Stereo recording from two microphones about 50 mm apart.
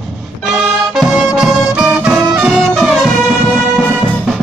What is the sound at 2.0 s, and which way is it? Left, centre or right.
Music, centre.